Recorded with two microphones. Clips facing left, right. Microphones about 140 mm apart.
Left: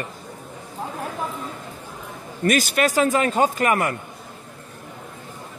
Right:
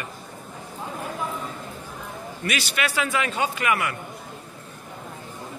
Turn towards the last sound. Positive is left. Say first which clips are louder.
# left 4 dB
turn(degrees=45)  # may be behind; listen again after turning